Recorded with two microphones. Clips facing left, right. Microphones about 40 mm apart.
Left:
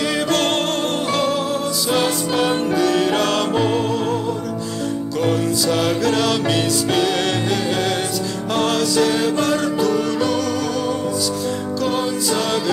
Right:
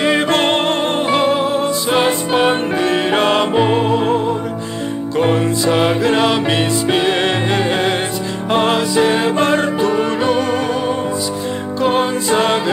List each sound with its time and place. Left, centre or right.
0.0 s music: right